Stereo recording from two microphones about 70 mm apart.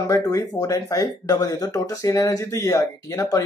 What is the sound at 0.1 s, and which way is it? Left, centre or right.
Speech, left.